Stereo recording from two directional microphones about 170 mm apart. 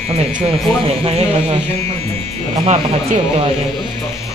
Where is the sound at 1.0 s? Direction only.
35° right (ahead or behind).